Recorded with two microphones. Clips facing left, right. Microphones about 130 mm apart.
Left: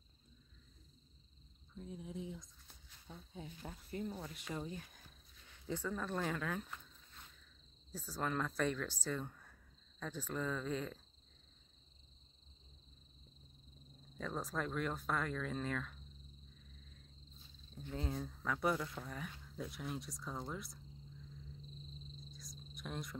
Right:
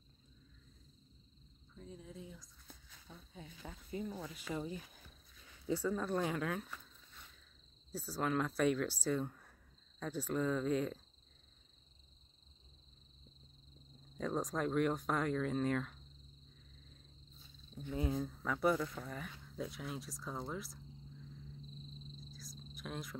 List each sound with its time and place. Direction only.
1.8 s speech: 10° left (ahead or behind)
3.9 s speech: 5° right (ahead or behind)
7.9 s speech: 10° right (ahead or behind)
14.1 s speech: 15° right (ahead or behind)
17.9 s speech: 5° right (ahead or behind)
22.4 s cricket: centre (ahead or behind)